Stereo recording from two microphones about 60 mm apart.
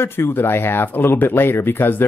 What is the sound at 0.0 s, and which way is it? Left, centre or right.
A man's voice, left.